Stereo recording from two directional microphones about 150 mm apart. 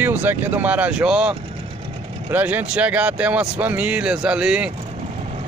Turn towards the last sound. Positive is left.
turn(degrees=-5)  # may be behind; listen again after turning